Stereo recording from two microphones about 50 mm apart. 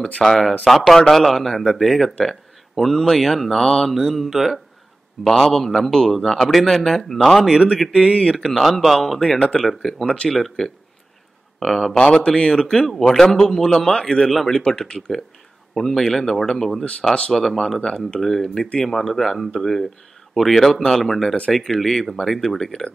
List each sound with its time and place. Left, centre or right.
0.0 s speech: centre
8.1 s speech: centre
8.4 s speech: centre
18.6 s speech: centre
18.9 s speech: centre